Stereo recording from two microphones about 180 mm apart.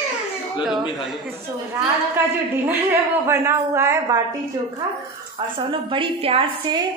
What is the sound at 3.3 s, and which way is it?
Speech, 15° right (ahead or behind).